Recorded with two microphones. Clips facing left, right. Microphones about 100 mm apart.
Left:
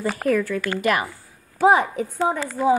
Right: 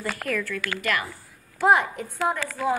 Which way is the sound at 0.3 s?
35° left (ahead or behind).